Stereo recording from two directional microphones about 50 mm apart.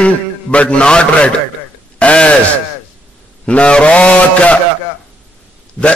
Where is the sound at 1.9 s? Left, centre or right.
Left.